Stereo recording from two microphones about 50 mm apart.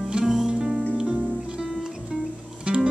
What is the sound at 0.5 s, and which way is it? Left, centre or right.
Music, centre.